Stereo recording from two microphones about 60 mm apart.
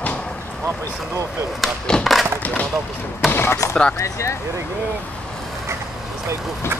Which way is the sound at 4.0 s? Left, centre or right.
Left.